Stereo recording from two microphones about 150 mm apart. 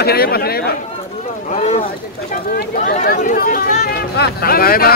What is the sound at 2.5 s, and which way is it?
Speech, 60° left (ahead or behind).